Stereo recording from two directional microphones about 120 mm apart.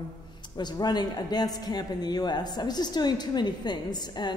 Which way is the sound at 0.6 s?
35° left (ahead or behind).